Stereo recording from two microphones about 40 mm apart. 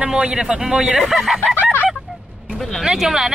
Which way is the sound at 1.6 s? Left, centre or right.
Left.